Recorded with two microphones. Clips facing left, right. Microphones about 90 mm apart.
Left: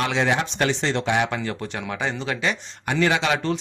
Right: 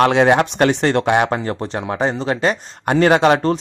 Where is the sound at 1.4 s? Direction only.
35° right (ahead or behind).